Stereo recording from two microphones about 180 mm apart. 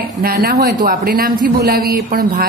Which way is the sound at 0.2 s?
55° right (ahead or behind).